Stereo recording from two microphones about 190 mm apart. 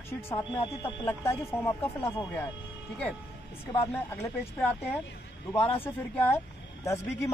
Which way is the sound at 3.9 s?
10° left (ahead or behind).